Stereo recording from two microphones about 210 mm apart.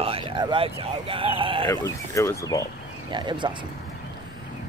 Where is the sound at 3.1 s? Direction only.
20° right (ahead or behind).